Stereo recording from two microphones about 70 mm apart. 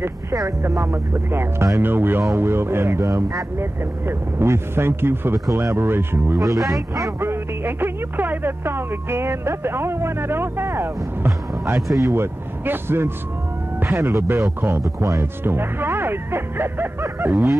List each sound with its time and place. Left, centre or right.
0.0 s speech: right
0.6 s speech: right
4.1 s speech: right
6.4 s speech: right
7.2 s speech: right
13.8 s speech: right
17.0 s speech: right